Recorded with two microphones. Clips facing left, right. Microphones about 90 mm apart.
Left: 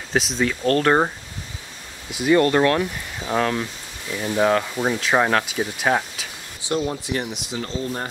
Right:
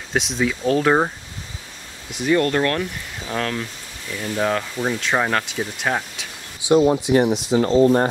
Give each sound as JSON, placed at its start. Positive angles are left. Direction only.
{"t": 0.1, "sound": "speech", "side_deg": 0}
{"t": 2.1, "sound": "speech", "side_deg": 5}
{"t": 6.9, "sound": "speech", "side_deg": -20}
{"t": 7.2, "sound": "speech", "side_deg": -40}